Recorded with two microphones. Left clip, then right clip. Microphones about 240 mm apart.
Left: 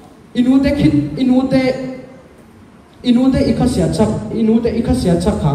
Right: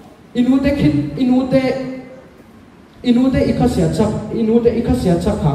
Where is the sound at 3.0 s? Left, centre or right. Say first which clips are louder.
Left 1 dB; left.